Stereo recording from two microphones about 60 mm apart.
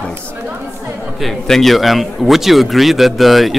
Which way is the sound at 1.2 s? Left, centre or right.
Centre.